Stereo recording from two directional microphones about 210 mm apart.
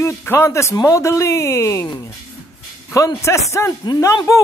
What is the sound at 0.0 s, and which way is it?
Speech, 10° left (ahead or behind).